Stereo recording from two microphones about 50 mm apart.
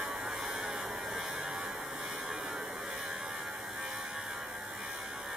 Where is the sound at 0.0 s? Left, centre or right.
Centre.